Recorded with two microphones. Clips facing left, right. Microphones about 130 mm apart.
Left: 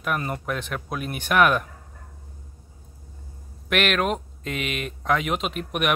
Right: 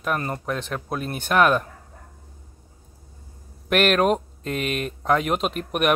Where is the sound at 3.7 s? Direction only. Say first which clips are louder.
Right 4 dB; 40° right (ahead or behind).